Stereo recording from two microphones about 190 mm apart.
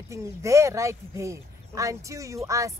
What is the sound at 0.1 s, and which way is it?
Speech, 15° right (ahead or behind).